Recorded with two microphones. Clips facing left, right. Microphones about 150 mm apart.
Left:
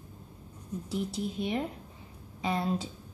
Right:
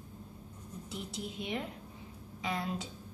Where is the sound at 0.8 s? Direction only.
35° left (ahead or behind).